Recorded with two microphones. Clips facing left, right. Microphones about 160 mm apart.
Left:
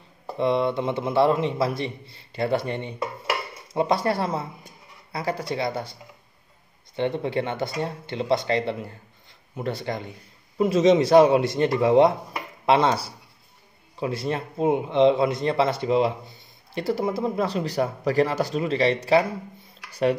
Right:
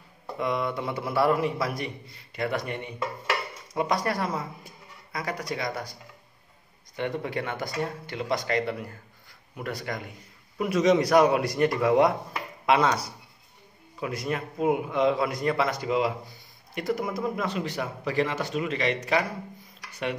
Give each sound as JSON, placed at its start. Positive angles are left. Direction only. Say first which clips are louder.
{"t": 0.4, "sound": "a man's voice", "louder": "left 6 dB", "side_deg": 30}
{"t": 7.0, "sound": "a man's voice", "louder": "left 5 dB", "side_deg": 25}